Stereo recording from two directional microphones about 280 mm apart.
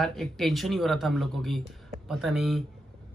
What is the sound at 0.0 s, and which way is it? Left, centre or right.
Speech, centre.